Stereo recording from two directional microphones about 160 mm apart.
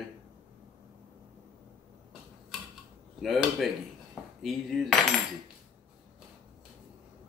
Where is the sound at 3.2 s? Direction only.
Centre (ahead or behind).